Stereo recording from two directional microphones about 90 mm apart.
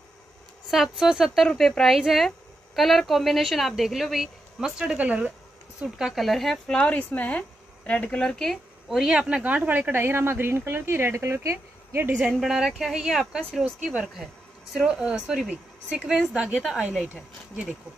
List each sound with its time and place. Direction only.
0.9 s speech: 5° right (ahead or behind)
6.9 s speech: 15° left (ahead or behind); by 12.2 s 25° right (ahead or behind)
12.2 s speech: 5° right (ahead or behind)